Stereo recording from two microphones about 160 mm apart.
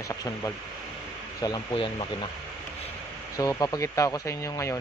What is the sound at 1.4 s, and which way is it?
Speech, 30° left (ahead or behind).